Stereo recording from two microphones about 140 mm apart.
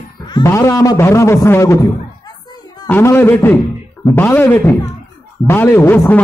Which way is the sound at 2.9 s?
15° left (ahead or behind).